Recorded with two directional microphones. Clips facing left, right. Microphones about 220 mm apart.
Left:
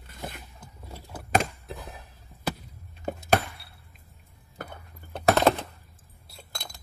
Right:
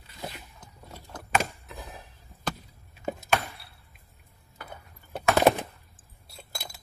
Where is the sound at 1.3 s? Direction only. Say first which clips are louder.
Left 2 dB; 40° left (ahead or behind).